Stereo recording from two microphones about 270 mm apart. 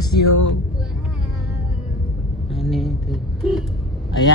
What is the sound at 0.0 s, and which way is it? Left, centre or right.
Speech, left.